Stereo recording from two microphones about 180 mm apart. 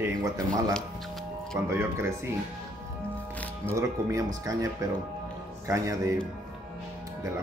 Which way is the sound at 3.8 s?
15° right (ahead or behind).